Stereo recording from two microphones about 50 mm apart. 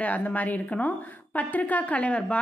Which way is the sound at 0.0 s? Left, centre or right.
Left.